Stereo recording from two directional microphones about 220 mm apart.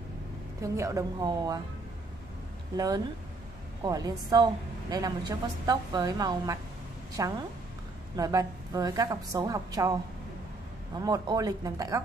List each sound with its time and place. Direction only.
0.6 s a woman's voice: 15° right (ahead or behind)
2.7 s a woman's voice: 15° right (ahead or behind)
11.0 s a woman's voice: 15° right (ahead or behind)